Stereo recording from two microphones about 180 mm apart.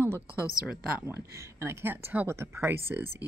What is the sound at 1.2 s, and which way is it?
Speech, 15° right (ahead or behind).